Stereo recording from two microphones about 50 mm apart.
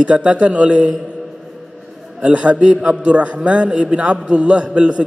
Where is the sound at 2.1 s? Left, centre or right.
Right.